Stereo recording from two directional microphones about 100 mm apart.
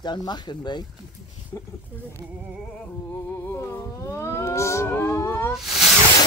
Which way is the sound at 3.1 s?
25° left (ahead or behind).